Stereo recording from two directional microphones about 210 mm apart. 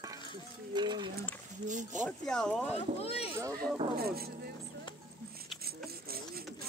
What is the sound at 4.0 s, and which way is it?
Speech, 45° right (ahead or behind).